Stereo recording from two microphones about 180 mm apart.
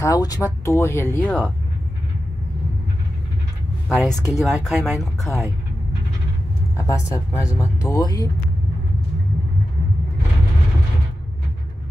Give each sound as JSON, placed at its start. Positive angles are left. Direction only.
{"t": 0.0, "sound": "speech", "side_deg": 20}
{"t": 4.0, "sound": "speech", "side_deg": 0}
{"t": 6.8, "sound": "speech", "side_deg": 15}